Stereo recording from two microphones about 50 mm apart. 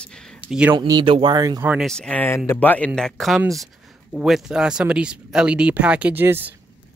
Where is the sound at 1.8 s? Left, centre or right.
Centre.